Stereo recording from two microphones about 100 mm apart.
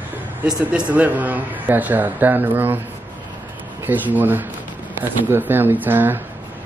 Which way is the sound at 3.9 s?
15° right (ahead or behind).